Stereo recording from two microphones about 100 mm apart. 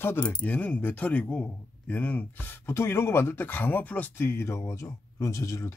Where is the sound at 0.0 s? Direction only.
20° left (ahead or behind).